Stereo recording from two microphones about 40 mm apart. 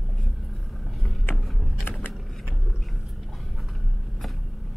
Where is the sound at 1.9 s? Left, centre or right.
Left.